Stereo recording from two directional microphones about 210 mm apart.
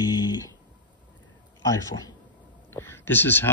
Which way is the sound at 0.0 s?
20° left (ahead or behind).